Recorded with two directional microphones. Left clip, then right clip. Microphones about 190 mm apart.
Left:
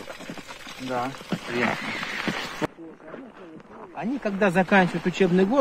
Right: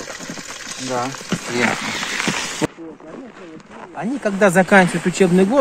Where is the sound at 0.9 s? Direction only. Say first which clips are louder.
Right 5 dB; centre (ahead or behind).